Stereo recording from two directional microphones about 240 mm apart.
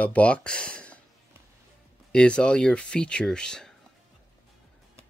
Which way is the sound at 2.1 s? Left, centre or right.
Centre.